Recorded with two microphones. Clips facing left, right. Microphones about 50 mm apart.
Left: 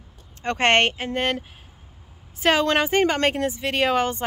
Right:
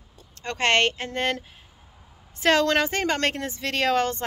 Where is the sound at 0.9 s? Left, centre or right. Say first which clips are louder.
Left 2 dB; centre.